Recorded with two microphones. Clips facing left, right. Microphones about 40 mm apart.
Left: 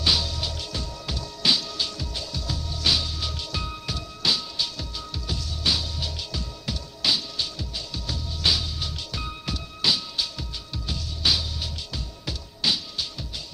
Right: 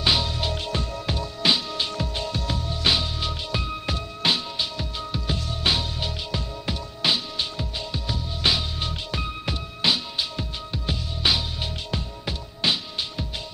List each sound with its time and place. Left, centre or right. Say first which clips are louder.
0.0 s music: right 2 dB; right